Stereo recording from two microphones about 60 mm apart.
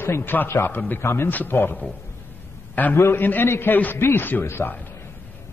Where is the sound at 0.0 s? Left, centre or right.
Left.